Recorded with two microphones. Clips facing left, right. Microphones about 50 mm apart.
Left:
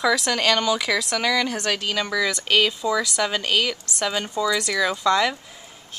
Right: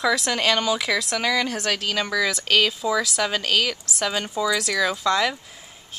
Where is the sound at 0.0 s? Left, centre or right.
Centre.